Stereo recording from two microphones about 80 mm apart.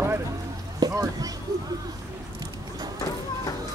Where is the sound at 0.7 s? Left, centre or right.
Right.